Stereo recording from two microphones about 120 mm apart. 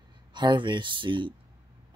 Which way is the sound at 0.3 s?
40° right (ahead or behind).